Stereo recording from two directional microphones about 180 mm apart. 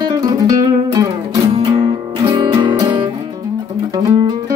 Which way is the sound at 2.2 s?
25° right (ahead or behind).